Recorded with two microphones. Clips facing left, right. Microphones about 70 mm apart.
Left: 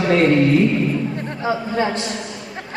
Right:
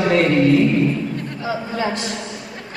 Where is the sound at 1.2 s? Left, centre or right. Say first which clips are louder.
Left 3 dB; left.